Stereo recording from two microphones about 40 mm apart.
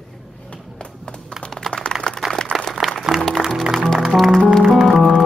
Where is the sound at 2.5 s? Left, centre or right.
Right.